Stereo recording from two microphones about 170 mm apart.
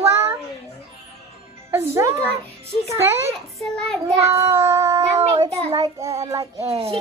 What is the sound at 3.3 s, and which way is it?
Speech, 5° left (ahead or behind).